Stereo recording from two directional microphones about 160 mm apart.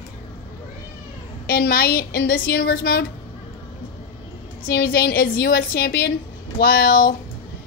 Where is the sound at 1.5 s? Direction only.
70° left (ahead or behind).